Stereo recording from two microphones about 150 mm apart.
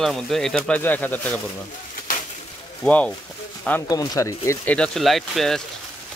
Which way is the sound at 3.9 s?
25° left (ahead or behind).